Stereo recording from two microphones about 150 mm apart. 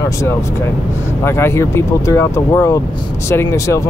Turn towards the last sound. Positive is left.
turn(degrees=20)  # may be behind; listen again after turning